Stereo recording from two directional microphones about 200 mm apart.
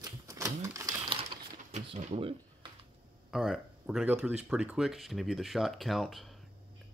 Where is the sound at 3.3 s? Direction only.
Centre (ahead or behind).